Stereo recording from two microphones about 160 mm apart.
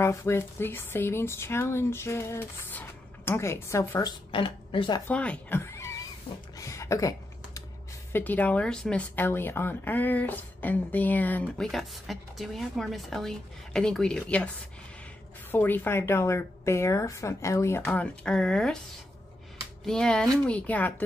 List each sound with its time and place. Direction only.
0.0 s speech: 15° left (ahead or behind)
4.3 s speech: 30° left (ahead or behind)
5.0 s speech: 10° left (ahead or behind)
6.5 s a sound: 20° left (ahead or behind)
8.1 s speech: 10° left (ahead or behind)
15.5 s speech: 10° left (ahead or behind)
17.8 s speech: 5° left (ahead or behind)
19.9 s speech: 5° left (ahead or behind)